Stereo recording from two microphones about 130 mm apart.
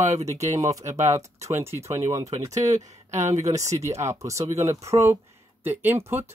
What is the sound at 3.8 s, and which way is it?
Speech, 20° right (ahead or behind).